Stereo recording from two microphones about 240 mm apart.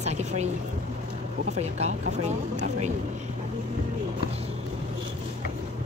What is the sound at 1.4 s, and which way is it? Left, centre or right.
Speech, right.